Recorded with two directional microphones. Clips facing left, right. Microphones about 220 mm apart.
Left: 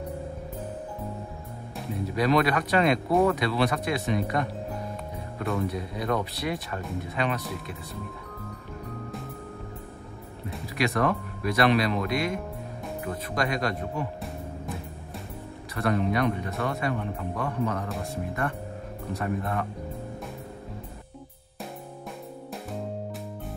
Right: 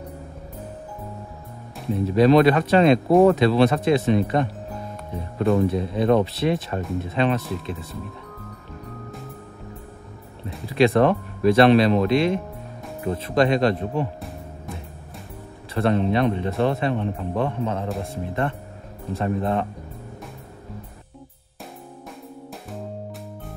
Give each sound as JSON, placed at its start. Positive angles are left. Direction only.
{"t": 2.1, "sound": "a man's voice", "side_deg": -25}
{"t": 3.1, "sound": "speech", "side_deg": -45}
{"t": 3.3, "sound": "a man's voice", "side_deg": -25}
{"t": 5.7, "sound": "a man's voice", "side_deg": -25}
{"t": 10.7, "sound": "a man's voice", "side_deg": -30}
{"t": 15.7, "sound": "a man's voice", "side_deg": -25}